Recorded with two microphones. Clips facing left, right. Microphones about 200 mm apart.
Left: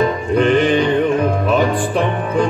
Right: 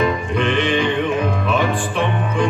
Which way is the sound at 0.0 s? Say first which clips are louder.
Left 4 dB; 40° left (ahead or behind).